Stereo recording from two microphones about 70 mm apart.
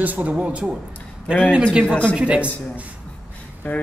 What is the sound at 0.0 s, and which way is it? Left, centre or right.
Speech, right.